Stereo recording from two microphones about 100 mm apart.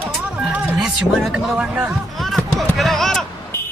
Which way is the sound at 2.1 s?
Centre (ahead or behind).